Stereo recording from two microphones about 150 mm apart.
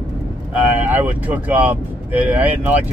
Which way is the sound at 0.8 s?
10° right (ahead or behind).